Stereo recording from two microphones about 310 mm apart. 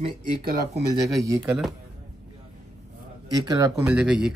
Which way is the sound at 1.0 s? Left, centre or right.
Centre.